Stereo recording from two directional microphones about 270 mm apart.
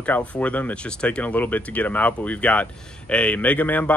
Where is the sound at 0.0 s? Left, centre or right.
Centre.